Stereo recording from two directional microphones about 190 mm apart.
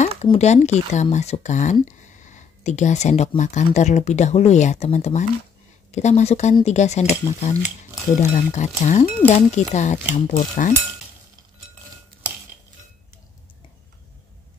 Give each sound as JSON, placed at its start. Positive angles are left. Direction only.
{"t": 0.2, "sound": "speech", "side_deg": 35}